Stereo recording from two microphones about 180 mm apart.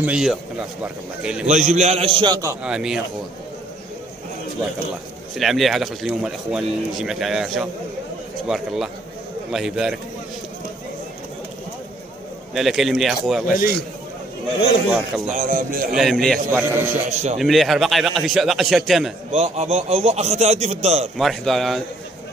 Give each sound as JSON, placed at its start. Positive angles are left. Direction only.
{"t": 0.0, "sound": "speech", "side_deg": -5}
{"t": 1.5, "sound": "a man's voice", "side_deg": -40}
{"t": 2.6, "sound": "speech", "side_deg": -5}
{"t": 5.3, "sound": "speech", "side_deg": 0}
{"t": 12.5, "sound": "speech", "side_deg": 0}
{"t": 13.5, "sound": "a man's voice", "side_deg": 50}
{"t": 14.9, "sound": "speech", "side_deg": -5}
{"t": 15.3, "sound": "a man's voice", "side_deg": -50}
{"t": 16.0, "sound": "speech", "side_deg": 0}
{"t": 19.3, "sound": "a man's voice", "side_deg": -35}
{"t": 21.2, "sound": "speech", "side_deg": 0}